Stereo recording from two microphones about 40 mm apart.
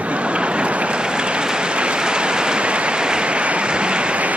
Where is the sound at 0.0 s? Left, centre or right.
Right.